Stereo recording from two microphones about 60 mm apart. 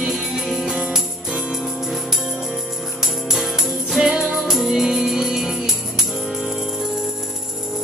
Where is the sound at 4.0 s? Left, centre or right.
Centre.